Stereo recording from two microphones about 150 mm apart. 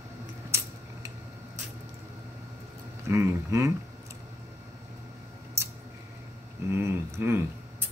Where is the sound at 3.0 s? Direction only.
20° right (ahead or behind).